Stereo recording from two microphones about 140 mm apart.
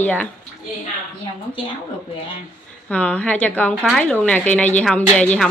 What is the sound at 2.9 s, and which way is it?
A woman's voice, 10° left (ahead or behind).